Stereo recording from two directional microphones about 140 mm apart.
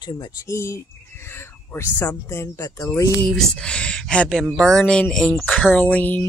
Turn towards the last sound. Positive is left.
turn(degrees=10)  # may be behind; listen again after turning